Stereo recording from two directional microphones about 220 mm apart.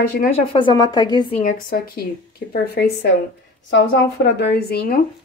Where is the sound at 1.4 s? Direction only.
40° left (ahead or behind).